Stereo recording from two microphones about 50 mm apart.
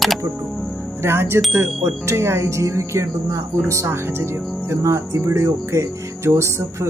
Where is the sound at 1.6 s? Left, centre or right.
Right.